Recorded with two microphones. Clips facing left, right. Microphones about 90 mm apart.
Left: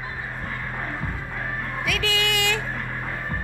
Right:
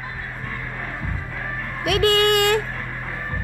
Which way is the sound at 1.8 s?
50° right (ahead or behind).